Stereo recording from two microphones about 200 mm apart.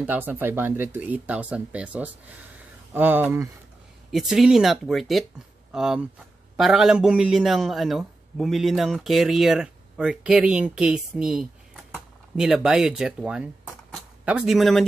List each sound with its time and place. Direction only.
0.0 s speech: 10° right (ahead or behind)